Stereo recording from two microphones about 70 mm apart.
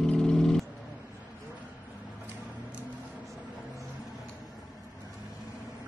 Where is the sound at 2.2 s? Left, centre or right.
Right.